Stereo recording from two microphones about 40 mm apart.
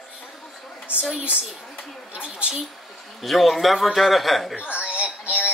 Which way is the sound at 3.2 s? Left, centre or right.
Centre.